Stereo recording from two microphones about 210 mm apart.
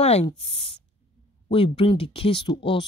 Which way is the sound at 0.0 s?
30° left (ahead or behind).